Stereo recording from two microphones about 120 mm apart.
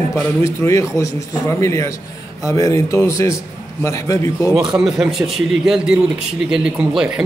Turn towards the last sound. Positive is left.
turn(degrees=-5)  # may be behind; listen again after turning